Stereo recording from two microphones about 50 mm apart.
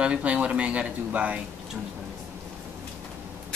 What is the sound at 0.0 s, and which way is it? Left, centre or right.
Speech, right.